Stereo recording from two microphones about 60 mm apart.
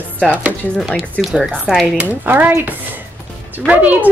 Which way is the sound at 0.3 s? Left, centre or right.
Right.